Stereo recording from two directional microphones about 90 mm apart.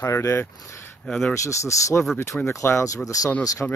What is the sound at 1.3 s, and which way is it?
A man's voice, 35° left (ahead or behind).